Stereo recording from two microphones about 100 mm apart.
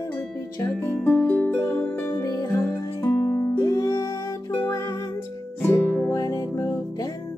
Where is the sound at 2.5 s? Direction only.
25° left (ahead or behind).